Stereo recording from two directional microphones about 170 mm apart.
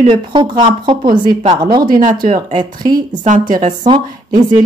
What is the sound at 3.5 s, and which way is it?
Speech, 45° right (ahead or behind).